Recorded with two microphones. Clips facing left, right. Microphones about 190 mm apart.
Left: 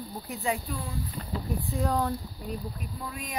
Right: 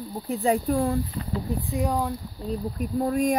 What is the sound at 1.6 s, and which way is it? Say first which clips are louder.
Speech: right 1 dB; 15° right (ahead or behind).